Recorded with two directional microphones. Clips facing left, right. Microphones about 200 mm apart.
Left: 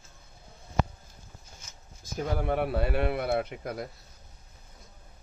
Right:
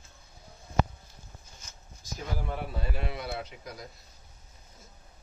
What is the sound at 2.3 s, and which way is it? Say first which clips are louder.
A man's voice: left 9 dB; 65° left (ahead or behind).